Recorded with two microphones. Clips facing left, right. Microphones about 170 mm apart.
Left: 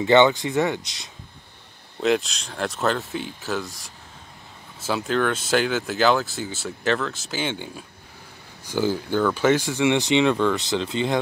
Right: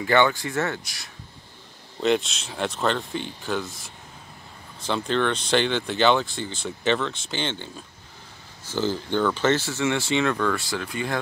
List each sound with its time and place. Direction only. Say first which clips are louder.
0.0 s speech: left 4 dB; 20° left (ahead or behind)
2.0 s speech: left 1 dB; centre (ahead or behind); by 11.1 s 20° left (ahead or behind)